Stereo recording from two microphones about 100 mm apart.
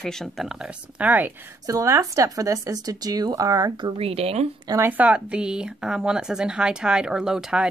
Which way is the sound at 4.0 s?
75° right (ahead or behind).